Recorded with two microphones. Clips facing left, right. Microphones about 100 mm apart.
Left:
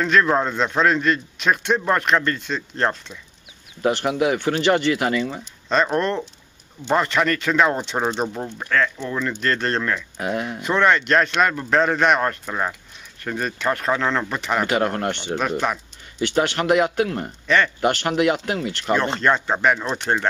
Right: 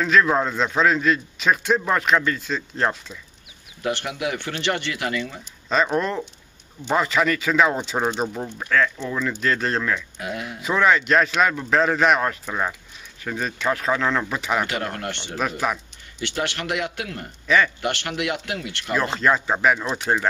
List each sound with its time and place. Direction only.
0.0 s speech: centre (ahead or behind)
3.8 s speech: 40° left (ahead or behind)
5.7 s speech: centre (ahead or behind)
10.1 s speech: 45° left (ahead or behind)
10.6 s speech: centre (ahead or behind)
14.7 s speech: 35° left (ahead or behind)
15.3 s speech: centre (ahead or behind)
16.2 s speech: 40° left (ahead or behind)
18.9 s speech: centre (ahead or behind)